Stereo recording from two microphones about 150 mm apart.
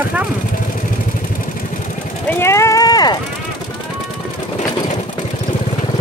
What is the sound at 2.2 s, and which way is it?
Run, 15° left (ahead or behind).